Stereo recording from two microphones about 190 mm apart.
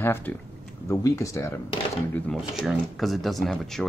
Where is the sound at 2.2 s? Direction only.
Centre (ahead or behind).